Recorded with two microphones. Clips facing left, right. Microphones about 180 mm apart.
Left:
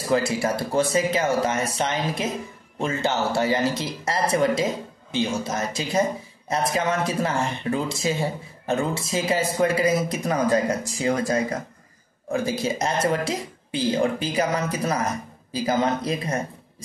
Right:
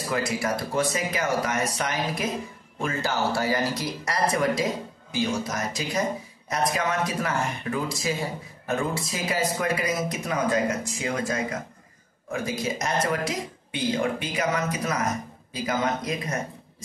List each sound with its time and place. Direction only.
0.1 s speech: 30° left (ahead or behind)